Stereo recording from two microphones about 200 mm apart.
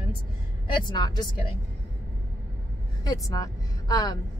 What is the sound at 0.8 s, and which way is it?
Speech, 20° left (ahead or behind).